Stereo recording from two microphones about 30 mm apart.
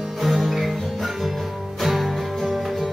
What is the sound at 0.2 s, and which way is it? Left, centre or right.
Music, centre.